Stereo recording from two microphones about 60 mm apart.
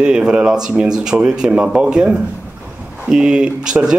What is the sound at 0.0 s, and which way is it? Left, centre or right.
A man's voice, centre.